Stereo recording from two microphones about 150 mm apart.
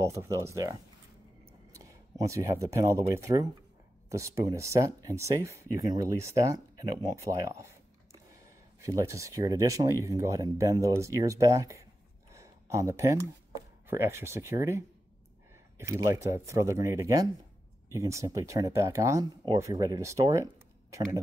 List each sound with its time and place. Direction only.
0.0 s speech: 20° right (ahead or behind)
12.4 s a sound: 20° right (ahead or behind)
13.8 s speech: 15° right (ahead or behind)